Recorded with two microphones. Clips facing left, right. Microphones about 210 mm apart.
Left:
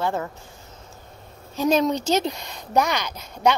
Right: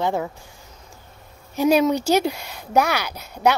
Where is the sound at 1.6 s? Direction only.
10° right (ahead or behind).